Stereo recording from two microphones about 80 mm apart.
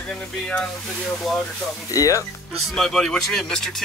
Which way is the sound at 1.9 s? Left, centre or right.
Left.